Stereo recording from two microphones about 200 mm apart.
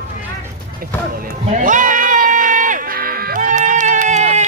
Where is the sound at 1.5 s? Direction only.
40° right (ahead or behind).